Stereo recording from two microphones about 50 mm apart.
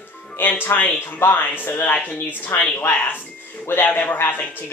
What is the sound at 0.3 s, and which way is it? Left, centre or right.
Speech, left.